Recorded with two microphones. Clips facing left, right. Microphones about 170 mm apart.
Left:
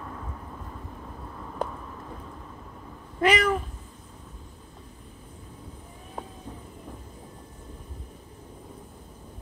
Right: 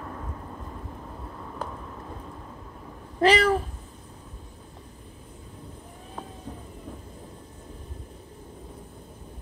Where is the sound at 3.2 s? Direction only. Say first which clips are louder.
Right 3 dB; 30° right (ahead or behind).